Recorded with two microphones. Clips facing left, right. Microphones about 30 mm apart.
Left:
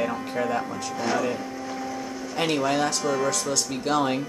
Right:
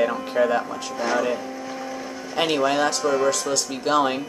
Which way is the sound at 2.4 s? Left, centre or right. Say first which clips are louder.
Right 3 dB; centre.